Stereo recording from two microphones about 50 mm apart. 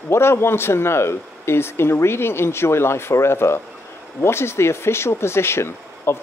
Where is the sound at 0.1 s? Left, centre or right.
Left.